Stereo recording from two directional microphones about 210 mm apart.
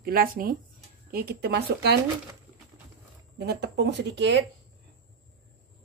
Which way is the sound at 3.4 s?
55° right (ahead or behind).